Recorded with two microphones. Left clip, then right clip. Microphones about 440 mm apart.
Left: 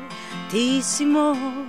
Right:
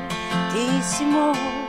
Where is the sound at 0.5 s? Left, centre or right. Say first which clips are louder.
Left 6 dB; left.